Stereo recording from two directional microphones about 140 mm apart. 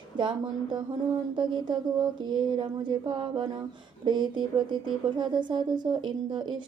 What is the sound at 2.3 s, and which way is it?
A woman's voice, 35° right (ahead or behind).